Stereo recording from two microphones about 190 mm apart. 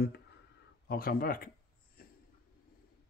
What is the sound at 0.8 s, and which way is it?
Speech, 50° left (ahead or behind).